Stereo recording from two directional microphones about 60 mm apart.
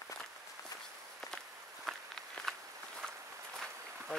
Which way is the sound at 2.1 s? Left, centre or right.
Centre.